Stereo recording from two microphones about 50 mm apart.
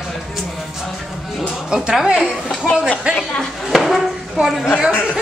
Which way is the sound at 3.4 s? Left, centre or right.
Centre.